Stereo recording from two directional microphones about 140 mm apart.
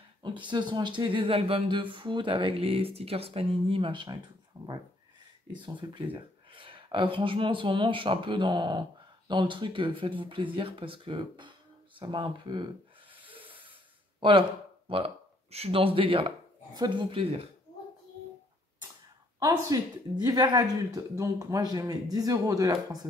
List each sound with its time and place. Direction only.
0.2 s speech: 35° right (ahead or behind)
4.6 s a sound: 20° right (ahead or behind)
5.6 s speech: 35° right (ahead or behind)
13.1 s sanding: 40° right (ahead or behind)
14.2 s speech: 35° right (ahead or behind)
19.4 s speech: 25° right (ahead or behind)